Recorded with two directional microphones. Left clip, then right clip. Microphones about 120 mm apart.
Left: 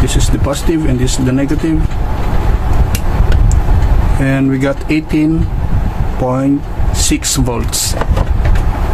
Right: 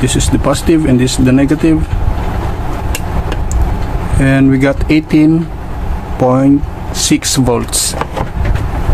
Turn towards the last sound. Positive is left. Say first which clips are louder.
# right 4 dB
turn(degrees=-30)  # may be behind; listen again after turning